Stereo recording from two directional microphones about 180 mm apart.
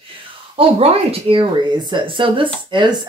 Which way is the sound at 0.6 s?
30° right (ahead or behind).